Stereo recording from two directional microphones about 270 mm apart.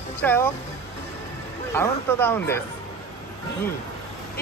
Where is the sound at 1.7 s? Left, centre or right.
Centre.